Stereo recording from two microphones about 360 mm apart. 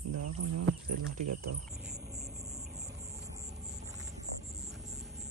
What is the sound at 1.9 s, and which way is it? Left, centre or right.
Music, right.